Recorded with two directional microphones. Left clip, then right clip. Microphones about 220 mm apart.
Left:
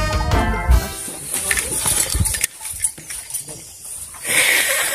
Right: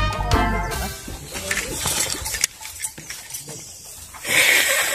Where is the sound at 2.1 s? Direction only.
10° left (ahead or behind).